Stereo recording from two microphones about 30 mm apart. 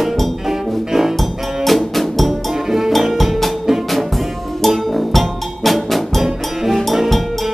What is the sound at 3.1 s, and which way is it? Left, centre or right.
Music, centre.